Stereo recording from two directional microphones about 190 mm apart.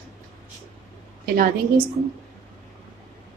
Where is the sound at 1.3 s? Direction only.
50° right (ahead or behind).